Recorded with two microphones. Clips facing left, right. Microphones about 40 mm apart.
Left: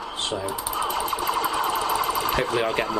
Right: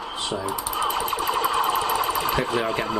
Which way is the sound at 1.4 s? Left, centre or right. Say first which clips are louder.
Right 4 dB; right.